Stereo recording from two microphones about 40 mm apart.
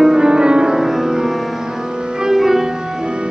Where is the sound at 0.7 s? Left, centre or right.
Centre.